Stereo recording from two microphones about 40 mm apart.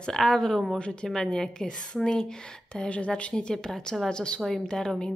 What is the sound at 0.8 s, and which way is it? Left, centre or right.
Speech, left.